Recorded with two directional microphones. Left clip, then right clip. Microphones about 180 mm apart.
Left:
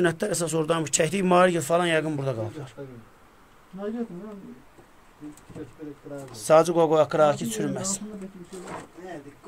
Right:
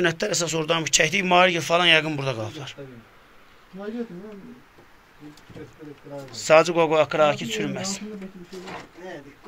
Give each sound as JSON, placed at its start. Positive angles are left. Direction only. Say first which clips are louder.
{"t": 0.0, "sound": "a man's voice", "louder": "right 2 dB", "side_deg": 20}
{"t": 6.3, "sound": "speech", "louder": "right 2 dB", "side_deg": 15}